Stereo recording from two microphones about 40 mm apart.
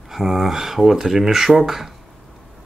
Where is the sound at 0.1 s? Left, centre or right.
Centre.